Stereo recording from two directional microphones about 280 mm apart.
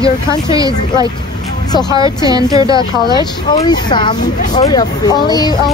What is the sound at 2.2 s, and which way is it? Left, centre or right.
Speech, centre.